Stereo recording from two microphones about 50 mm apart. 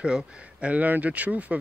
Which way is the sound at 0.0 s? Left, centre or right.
Right.